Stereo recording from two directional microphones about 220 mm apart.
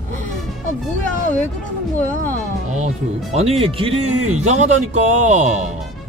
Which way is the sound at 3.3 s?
25° right (ahead or behind).